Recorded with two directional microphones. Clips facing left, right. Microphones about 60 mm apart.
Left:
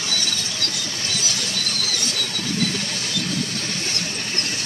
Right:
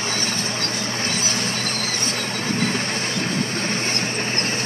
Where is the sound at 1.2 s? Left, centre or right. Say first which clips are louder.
Right 3 dB; right.